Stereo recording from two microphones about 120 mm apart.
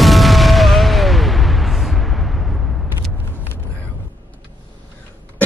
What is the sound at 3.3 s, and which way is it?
Vehicle, 15° left (ahead or behind).